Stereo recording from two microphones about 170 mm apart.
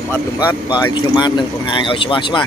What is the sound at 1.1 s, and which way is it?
Speech, 25° left (ahead or behind).